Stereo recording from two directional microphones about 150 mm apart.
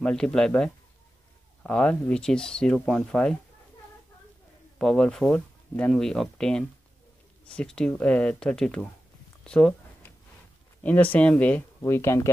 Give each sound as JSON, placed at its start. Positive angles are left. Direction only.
{"t": 0.0, "sound": "speech", "side_deg": 5}
{"t": 4.7, "sound": "speech", "side_deg": 5}
{"t": 10.8, "sound": "speech", "side_deg": 10}